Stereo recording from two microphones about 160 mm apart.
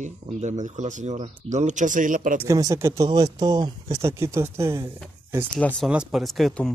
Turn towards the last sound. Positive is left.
turn(degrees=0)  # may be behind; listen again after turning